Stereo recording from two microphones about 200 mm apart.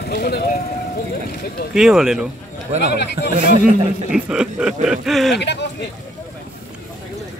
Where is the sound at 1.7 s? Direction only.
5° right (ahead or behind).